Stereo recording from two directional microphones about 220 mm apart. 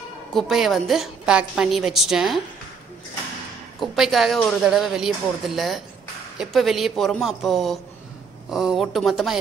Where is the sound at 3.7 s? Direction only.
Centre (ahead or behind).